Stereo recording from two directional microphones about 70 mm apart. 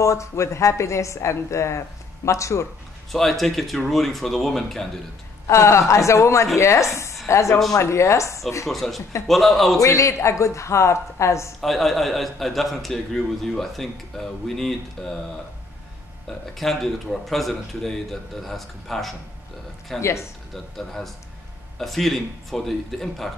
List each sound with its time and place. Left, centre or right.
0.0 s a woman's voice: left
3.1 s a man's voice: centre
5.5 s a woman's voice: left
8.6 s a man's voice: centre
9.8 s a woman's voice: left
11.6 s a man's voice: centre
16.5 s a man's voice: centre
20.0 s a woman's voice: left
20.5 s a man's voice: centre